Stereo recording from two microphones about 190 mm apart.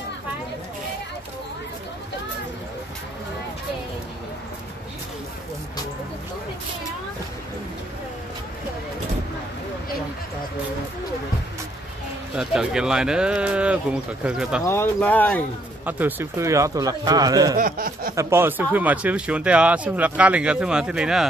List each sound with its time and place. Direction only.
12.4 s speech: 5° right (ahead or behind)
14.6 s speech: 10° left (ahead or behind)
15.8 s speech: 10° right (ahead or behind)
17.6 s a sound: 45° right (ahead or behind)
18.1 s speech: 10° right (ahead or behind)